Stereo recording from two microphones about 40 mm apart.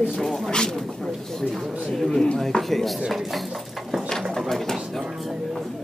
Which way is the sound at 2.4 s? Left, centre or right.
Centre.